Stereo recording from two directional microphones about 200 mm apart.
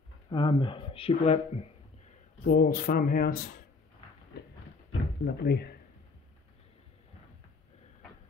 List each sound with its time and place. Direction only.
0.3 s speech: 25° left (ahead or behind)
2.4 s speech: 50° left (ahead or behind)
5.2 s speech: 55° left (ahead or behind)